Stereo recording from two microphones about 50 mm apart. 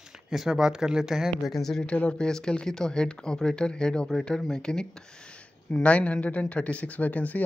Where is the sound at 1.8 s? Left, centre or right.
Left.